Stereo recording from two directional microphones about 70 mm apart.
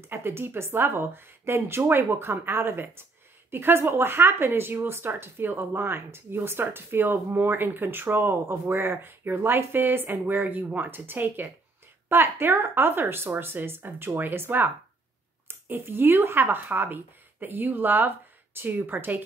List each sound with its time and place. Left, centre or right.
0.1 s speech: right